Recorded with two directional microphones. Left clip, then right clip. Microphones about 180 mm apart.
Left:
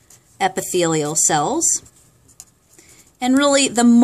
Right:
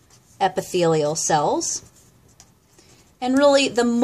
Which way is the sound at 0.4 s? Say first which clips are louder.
Left 1 dB; 45° left (ahead or behind).